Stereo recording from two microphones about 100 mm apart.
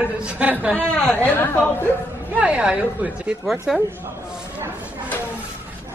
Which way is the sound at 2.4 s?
15° right (ahead or behind).